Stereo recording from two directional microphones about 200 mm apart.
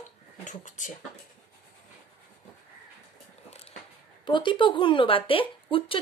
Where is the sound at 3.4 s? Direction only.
30° left (ahead or behind).